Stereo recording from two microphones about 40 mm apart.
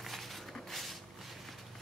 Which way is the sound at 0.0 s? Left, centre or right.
Centre.